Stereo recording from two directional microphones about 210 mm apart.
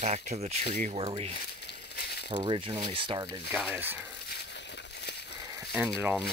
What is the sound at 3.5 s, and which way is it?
Speech, 10° right (ahead or behind).